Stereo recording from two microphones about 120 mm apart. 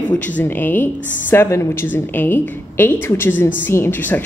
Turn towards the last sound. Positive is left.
turn(degrees=15)  # may be behind; listen again after turning